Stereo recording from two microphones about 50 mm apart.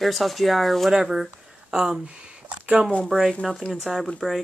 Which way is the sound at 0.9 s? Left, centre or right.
Centre.